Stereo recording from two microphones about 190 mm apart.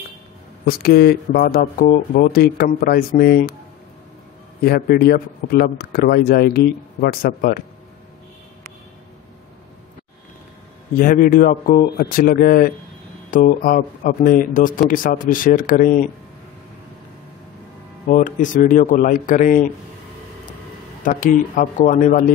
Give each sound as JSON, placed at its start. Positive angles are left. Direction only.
{"t": 0.7, "sound": "speech", "side_deg": 55}
{"t": 4.6, "sound": "speech", "side_deg": 55}
{"t": 11.0, "sound": "speech", "side_deg": 45}
{"t": 18.0, "sound": "speech", "side_deg": 40}
{"t": 21.0, "sound": "speech", "side_deg": 45}